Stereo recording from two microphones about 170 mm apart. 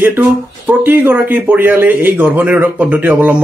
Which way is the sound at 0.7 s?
10° right (ahead or behind).